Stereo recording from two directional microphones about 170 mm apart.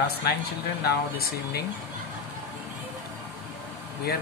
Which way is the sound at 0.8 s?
65° left (ahead or behind).